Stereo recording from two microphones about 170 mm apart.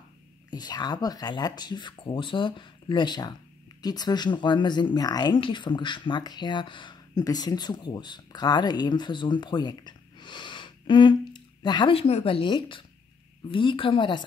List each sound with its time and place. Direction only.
0.5 s speech: 25° left (ahead or behind)